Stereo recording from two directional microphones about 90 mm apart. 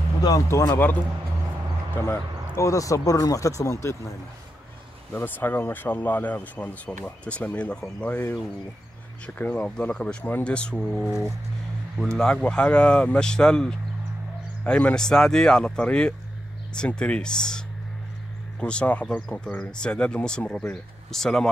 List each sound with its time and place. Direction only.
0.5 s speech: 30° left (ahead or behind)
2.5 s speech: 35° left (ahead or behind)
5.1 s speech: 20° left (ahead or behind)
11.1 s speech: 5° right (ahead or behind)
12.2 s speech: 10° left (ahead or behind)